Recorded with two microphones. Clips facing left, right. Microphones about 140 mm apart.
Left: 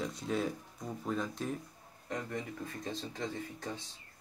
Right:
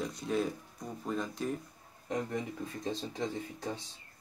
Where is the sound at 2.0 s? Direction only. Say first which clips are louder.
Right 4 dB; 20° right (ahead or behind).